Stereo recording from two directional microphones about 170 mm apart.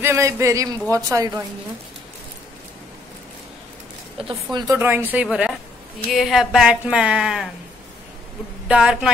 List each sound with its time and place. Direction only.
0.0 s speech: 15° right (ahead or behind)
4.2 s speech: 30° right (ahead or behind)
4.7 s speech: 10° right (ahead or behind)
8.6 s speech: 5° right (ahead or behind)